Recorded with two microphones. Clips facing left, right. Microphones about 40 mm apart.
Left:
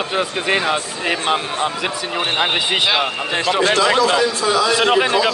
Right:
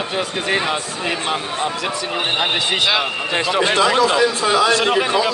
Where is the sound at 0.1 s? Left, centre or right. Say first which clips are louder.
Left 2 dB; centre.